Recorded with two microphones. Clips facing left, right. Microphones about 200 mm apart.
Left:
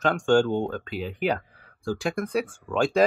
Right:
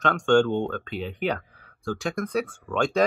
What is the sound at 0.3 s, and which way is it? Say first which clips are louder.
Speech: right 1 dB; 40° left (ahead or behind).